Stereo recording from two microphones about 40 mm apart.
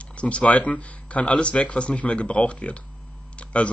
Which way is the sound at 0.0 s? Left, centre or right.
Left.